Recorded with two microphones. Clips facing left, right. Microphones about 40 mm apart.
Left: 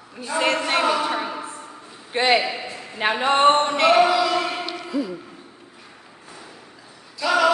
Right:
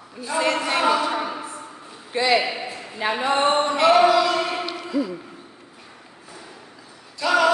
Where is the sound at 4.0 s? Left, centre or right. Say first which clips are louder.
Right 1 dB; centre.